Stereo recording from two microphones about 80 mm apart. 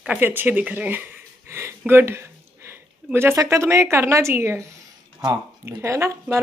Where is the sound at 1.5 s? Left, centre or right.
Right.